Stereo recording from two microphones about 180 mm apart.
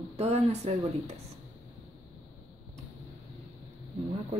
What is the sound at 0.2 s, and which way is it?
Speech, 35° right (ahead or behind).